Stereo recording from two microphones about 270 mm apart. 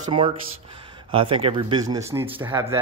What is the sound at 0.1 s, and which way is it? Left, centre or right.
Speech, centre.